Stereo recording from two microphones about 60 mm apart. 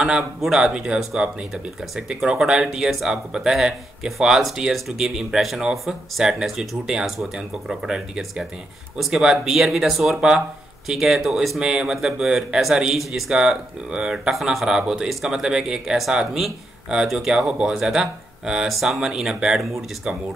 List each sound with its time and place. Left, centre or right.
0.0 s speech: centre